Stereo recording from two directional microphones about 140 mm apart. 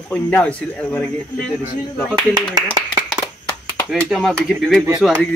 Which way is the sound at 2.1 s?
30° right (ahead or behind).